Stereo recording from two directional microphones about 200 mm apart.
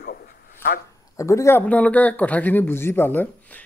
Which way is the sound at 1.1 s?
15° left (ahead or behind).